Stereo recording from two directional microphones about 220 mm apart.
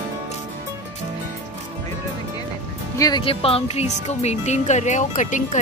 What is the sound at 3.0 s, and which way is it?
Speech, 20° left (ahead or behind).